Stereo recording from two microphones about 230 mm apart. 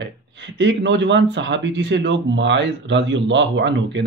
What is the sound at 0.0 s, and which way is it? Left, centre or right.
Speech, right.